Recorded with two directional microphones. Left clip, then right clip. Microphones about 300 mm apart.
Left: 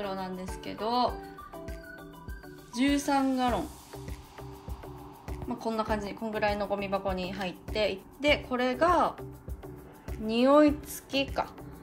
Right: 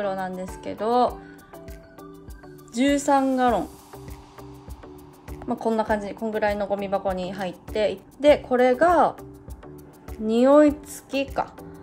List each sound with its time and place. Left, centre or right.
0.0 s speech: centre
3.1 s a woman's voice: centre
5.3 s a woman's voice: centre